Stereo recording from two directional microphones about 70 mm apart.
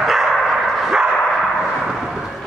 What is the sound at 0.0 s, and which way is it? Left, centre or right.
Bow-wow, centre.